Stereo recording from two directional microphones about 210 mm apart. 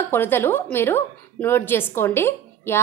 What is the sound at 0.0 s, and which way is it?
A woman's voice, 10° left (ahead or behind).